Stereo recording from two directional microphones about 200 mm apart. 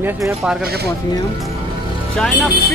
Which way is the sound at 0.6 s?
50° right (ahead or behind).